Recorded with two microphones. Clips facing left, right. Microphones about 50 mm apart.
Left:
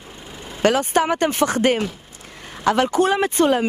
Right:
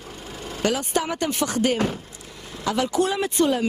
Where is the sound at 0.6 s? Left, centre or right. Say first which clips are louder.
Left 6 dB; left.